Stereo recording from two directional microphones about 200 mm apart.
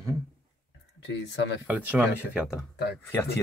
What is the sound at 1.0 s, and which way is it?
Speech, 65° left (ahead or behind).